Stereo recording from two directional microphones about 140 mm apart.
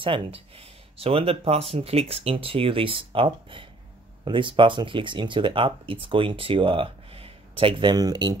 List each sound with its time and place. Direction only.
0.0 s speech: 40° right (ahead or behind)